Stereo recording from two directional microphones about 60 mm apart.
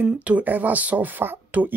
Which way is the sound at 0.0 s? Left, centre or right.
Right.